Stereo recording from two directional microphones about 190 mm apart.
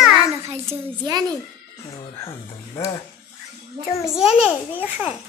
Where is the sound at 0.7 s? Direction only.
20° right (ahead or behind).